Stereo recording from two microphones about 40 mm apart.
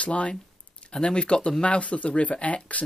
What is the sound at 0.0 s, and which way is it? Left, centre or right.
Speech, left.